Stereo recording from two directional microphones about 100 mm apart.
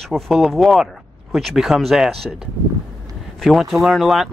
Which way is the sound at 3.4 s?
Centre (ahead or behind).